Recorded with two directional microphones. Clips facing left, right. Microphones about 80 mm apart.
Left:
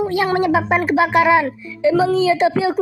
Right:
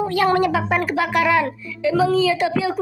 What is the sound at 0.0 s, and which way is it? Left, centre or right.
A woman's voice, centre.